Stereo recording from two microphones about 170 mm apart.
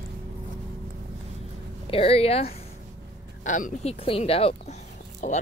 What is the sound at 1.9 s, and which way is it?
Speech, 35° left (ahead or behind).